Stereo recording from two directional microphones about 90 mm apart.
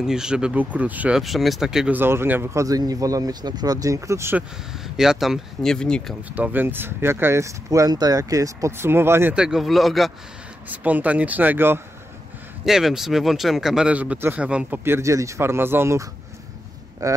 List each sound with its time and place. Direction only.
0.0 s speech: 5° right (ahead or behind)
1.1 s speech: centre (ahead or behind)
1.9 s speech: 25° right (ahead or behind)
2.5 s speech: 40° right (ahead or behind)
4.8 s speech: 5° right (ahead or behind)
6.3 s speech: 20° right (ahead or behind)
9.3 s speech: 10° right (ahead or behind)
10.7 s speech: 20° right (ahead or behind)
12.6 s speech: 5° right (ahead or behind)
14.9 s speech: 35° right (ahead or behind)
17.0 s speech: 40° right (ahead or behind)